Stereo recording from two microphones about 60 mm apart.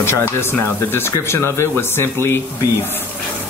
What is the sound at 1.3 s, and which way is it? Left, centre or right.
Speech, left.